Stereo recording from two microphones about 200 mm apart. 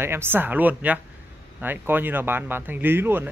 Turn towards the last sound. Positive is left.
turn(degrees=-10)  # may be behind; listen again after turning